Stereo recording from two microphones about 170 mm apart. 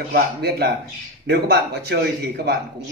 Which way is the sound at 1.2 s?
80° right.